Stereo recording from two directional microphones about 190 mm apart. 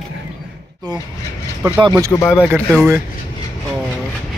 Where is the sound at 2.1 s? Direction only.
15° left (ahead or behind).